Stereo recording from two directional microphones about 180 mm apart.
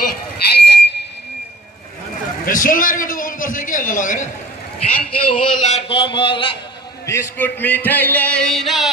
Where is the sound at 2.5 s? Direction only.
50° left (ahead or behind).